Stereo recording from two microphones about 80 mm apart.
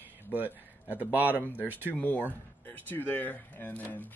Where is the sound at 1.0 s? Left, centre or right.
Right.